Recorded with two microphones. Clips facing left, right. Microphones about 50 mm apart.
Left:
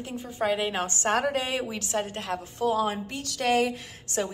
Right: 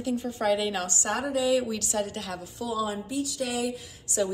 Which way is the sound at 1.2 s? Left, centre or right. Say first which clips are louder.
Right 3 dB; left.